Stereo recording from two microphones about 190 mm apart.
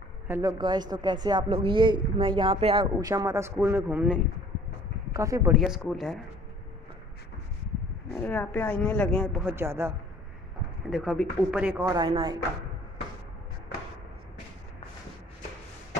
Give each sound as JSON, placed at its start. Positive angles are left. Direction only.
{"t": 0.3, "sound": "speech", "side_deg": -15}
{"t": 5.5, "sound": "speech", "side_deg": 0}
{"t": 8.2, "sound": "a woman's voice", "side_deg": 5}
{"t": 9.4, "sound": "speech", "side_deg": -10}
{"t": 10.9, "sound": "speech", "side_deg": 0}
{"t": 11.9, "sound": "speech", "side_deg": -25}